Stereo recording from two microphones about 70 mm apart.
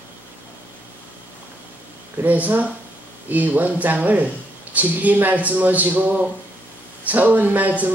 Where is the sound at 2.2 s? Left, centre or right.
Right.